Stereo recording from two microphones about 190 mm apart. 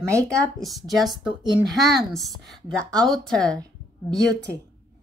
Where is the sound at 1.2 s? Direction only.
20° right (ahead or behind).